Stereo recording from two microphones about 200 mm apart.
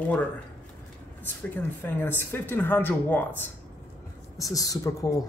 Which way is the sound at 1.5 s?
10° left (ahead or behind).